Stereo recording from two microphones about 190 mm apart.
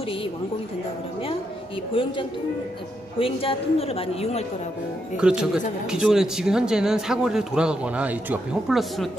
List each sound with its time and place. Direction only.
3.2 s a woman's voice: 30° left (ahead or behind)
5.1 s speech: 5° right (ahead or behind)